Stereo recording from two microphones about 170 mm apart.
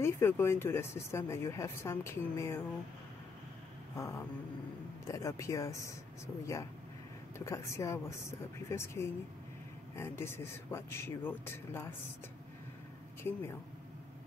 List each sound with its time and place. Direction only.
0.0 s speech: 15° left (ahead or behind)
3.9 s a sound: 15° left (ahead or behind)
5.0 s speech: 20° left (ahead or behind)